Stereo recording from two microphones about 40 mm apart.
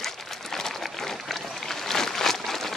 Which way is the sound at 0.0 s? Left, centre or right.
Centre.